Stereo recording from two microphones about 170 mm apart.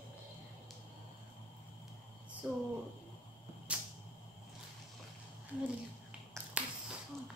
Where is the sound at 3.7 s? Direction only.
5° right (ahead or behind).